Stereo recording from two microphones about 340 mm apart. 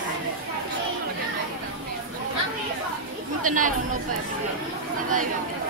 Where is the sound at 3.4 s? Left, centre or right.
Right.